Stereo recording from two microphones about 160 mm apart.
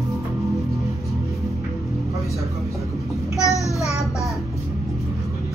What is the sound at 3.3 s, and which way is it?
Child singing, 20° left (ahead or behind).